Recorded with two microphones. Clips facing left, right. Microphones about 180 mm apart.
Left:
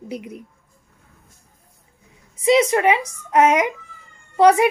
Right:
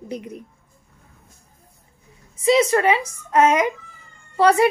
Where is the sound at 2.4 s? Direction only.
20° left (ahead or behind).